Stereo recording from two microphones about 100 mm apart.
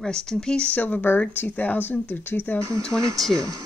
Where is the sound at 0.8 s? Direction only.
15° left (ahead or behind).